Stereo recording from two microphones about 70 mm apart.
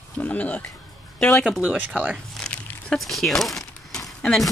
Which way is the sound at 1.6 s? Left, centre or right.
Centre.